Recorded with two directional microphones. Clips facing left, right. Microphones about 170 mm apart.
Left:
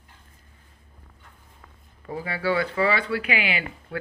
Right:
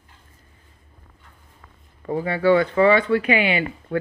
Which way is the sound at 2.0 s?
40° right (ahead or behind).